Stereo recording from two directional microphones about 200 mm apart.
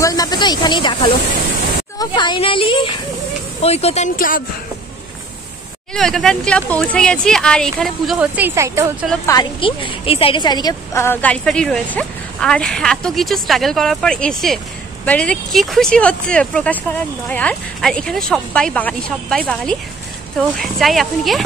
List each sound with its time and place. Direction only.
0.0 s speech: 20° left (ahead or behind); by 4.4 s 40° left (ahead or behind)
5.9 s a woman's voice: centre (ahead or behind); by 8.8 s 15° right (ahead or behind)
9.2 s a woman's voice: 20° left (ahead or behind); by 21.5 s centre (ahead or behind)